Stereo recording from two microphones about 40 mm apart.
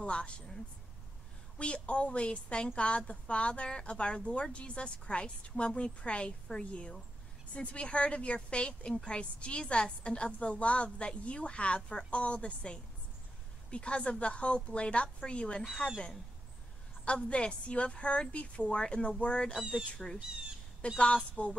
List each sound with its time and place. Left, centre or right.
0.0 s a woman's voice: left
1.6 s a woman's voice: left
17.0 s a woman's voice: left
20.0 s speech: centre
21.0 s speech: left